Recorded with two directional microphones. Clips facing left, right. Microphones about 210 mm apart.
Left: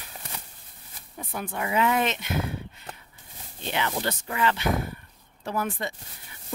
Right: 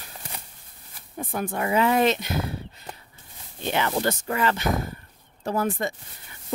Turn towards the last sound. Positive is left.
turn(degrees=-45)  # may be behind; listen again after turning